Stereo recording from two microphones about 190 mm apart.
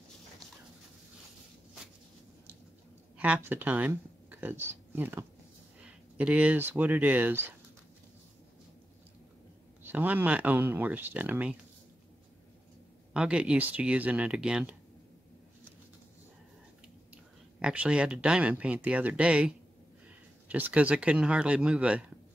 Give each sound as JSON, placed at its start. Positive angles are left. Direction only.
{"t": 3.2, "sound": "speech", "side_deg": -10}
{"t": 9.8, "sound": "speech", "side_deg": -10}
{"t": 13.1, "sound": "speech", "side_deg": -5}
{"t": 17.1, "sound": "speech", "side_deg": -5}